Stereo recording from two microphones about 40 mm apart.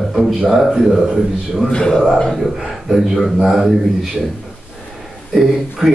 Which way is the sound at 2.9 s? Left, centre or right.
Centre.